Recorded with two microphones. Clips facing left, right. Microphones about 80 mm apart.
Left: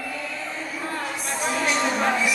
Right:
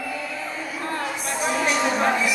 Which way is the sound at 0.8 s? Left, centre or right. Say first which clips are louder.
Right 3 dB; centre.